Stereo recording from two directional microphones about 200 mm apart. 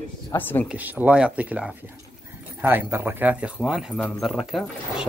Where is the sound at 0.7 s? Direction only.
10° right (ahead or behind).